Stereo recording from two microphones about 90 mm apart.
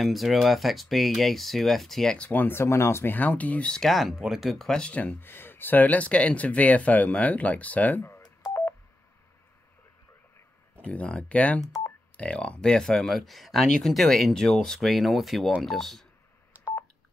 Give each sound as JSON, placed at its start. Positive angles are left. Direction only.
{"t": 0.0, "sound": "speech", "side_deg": 0}
{"t": 2.2, "sound": "speech", "side_deg": 20}
{"t": 8.5, "sound": "telephone dialing", "side_deg": 25}
{"t": 10.8, "sound": "speech", "side_deg": 15}
{"t": 16.5, "sound": "telephone dialing", "side_deg": -15}